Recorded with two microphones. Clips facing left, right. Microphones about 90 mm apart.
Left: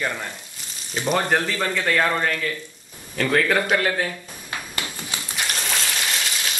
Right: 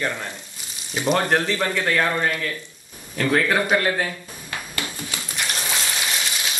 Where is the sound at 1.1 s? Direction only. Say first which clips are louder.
Right 1 dB; centre (ahead or behind).